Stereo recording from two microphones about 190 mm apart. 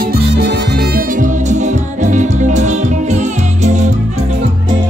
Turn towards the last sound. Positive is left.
turn(degrees=-35)  # may be behind; listen again after turning